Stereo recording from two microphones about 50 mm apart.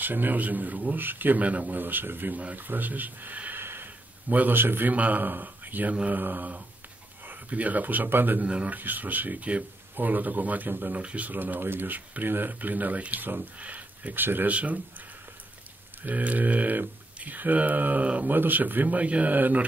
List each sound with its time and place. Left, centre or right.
0.0 s speech: right
3.6 s a sound: right
4.9 s a man's voice: right
8.5 s speech: right
8.7 s speech: right
11.0 s speech: right
14.2 s speech: right
14.5 s speech: right